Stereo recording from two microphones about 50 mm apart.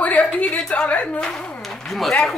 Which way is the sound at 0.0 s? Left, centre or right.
Left.